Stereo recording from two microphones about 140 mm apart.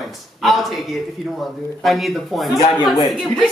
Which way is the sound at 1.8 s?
Centre (ahead or behind).